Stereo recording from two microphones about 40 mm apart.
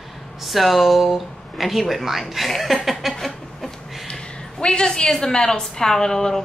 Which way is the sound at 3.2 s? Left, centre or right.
Centre.